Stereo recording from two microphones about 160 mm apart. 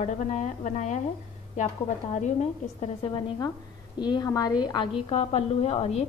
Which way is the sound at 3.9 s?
25° left (ahead or behind).